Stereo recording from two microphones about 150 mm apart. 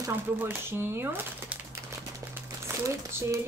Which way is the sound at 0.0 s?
15° right (ahead or behind).